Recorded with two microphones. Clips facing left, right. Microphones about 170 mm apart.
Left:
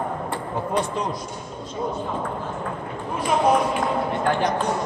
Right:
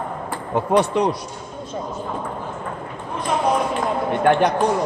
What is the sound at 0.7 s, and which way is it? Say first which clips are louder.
Speech: right 8 dB; 70° right (ahead or behind).